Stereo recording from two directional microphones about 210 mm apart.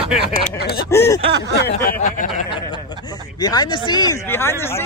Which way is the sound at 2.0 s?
40° left (ahead or behind).